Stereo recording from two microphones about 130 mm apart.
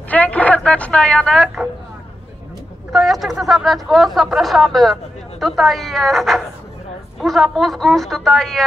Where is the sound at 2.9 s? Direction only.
Centre (ahead or behind).